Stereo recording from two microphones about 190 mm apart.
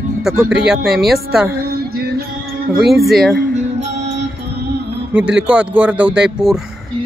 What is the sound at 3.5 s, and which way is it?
Music, 35° right (ahead or behind).